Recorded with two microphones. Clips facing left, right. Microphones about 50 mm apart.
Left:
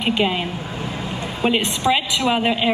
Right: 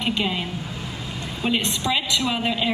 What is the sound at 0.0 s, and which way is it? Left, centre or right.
A woman's voice, left.